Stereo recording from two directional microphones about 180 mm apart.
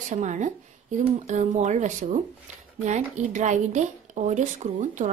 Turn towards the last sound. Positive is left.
turn(degrees=-40)  # may be behind; listen again after turning